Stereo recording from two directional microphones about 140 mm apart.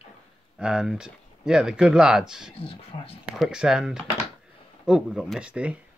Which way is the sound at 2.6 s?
40° left (ahead or behind).